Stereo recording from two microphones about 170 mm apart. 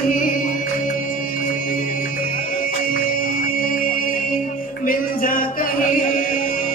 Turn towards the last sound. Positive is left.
turn(degrees=55)  # may be behind; listen again after turning